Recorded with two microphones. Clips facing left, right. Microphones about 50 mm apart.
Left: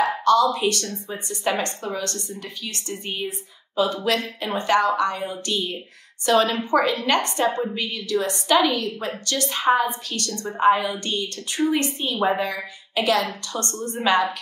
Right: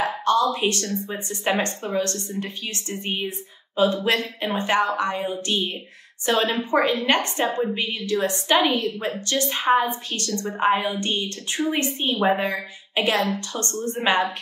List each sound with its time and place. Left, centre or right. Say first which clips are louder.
0.0 s a woman's voice: left 3 dB; right
13.6 s a woman's voice: right 1 dB; left
13.9 s a woman's voice: left 2 dB; right